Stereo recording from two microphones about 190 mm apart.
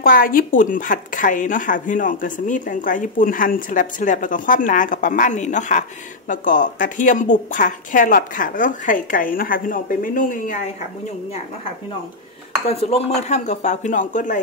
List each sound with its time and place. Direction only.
0.0 s speech: 45° left (ahead or behind)
12.6 s speech: 35° left (ahead or behind)